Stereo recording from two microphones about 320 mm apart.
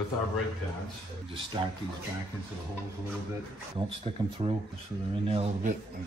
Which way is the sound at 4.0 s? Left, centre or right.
Centre.